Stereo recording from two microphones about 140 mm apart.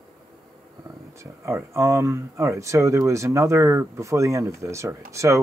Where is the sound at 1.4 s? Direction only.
20° right (ahead or behind).